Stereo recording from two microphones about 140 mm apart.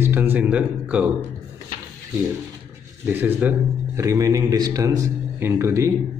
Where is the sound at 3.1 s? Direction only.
15° right (ahead or behind).